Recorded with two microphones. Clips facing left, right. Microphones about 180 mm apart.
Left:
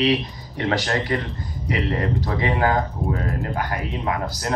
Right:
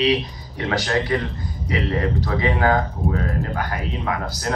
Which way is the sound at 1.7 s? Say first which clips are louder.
Right 1 dB; 40° left (ahead or behind).